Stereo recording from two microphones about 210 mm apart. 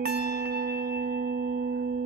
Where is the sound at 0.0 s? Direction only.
50° right (ahead or behind).